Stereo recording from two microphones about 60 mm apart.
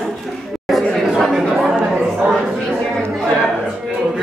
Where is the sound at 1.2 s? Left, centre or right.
Centre.